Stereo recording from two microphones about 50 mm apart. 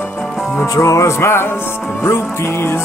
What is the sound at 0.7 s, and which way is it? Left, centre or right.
Music, left.